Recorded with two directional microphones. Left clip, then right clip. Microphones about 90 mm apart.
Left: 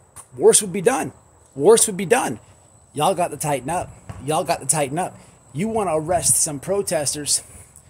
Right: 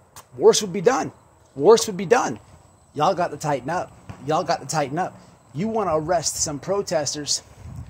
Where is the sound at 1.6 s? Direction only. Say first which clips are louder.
Left 1 dB; 40° left (ahead or behind).